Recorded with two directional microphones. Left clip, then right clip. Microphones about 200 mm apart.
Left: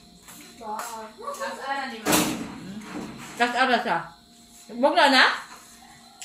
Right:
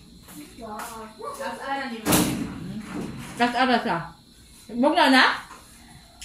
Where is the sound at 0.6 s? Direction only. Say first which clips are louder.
Left 4 dB; 35° left (ahead or behind).